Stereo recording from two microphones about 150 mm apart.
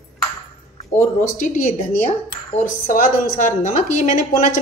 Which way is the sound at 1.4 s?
60° left (ahead or behind).